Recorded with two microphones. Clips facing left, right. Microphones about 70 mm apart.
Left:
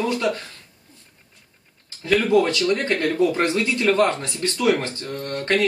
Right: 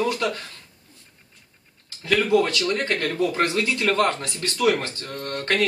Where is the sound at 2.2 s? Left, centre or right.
Left.